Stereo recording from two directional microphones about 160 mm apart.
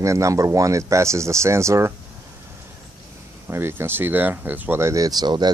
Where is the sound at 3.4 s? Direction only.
15° right (ahead or behind).